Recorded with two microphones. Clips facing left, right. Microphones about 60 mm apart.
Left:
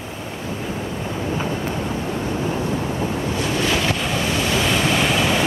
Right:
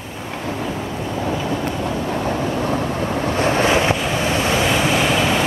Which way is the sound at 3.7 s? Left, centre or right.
Right.